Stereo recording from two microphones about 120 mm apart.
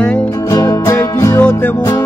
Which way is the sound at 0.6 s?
25° left (ahead or behind).